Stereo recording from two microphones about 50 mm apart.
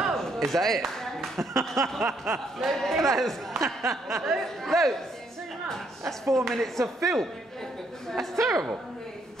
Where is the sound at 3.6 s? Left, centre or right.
Right.